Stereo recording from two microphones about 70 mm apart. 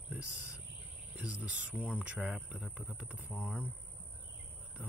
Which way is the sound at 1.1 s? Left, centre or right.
Right.